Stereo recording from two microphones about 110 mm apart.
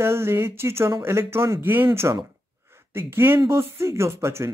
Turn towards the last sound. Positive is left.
turn(degrees=-25)  # may be behind; listen again after turning